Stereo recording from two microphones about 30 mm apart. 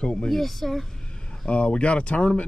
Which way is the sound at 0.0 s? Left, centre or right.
Left.